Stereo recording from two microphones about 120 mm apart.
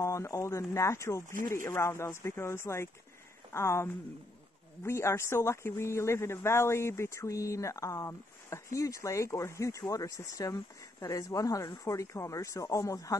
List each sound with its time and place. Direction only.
0.0 s speech: 25° left (ahead or behind)